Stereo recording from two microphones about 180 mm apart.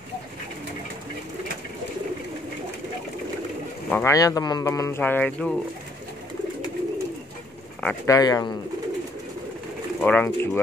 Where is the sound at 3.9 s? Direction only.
15° left (ahead or behind).